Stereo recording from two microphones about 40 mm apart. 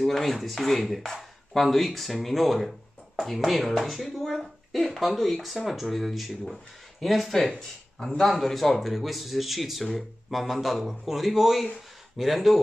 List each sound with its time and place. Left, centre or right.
0.0 s speech: centre